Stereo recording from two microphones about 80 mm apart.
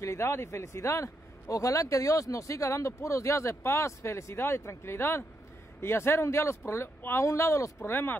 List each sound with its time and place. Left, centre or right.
0.0 s speech: left